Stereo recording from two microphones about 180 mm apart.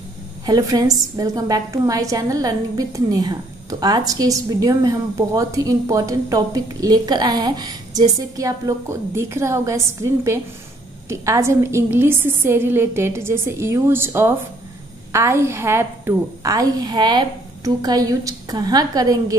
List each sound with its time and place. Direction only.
0.5 s a woman's voice: 20° right (ahead or behind)